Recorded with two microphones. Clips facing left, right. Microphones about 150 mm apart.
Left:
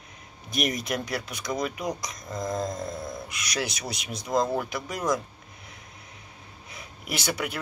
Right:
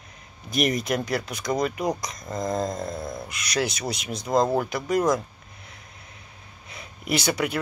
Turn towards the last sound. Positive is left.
turn(degrees=0)  # may be behind; listen again after turning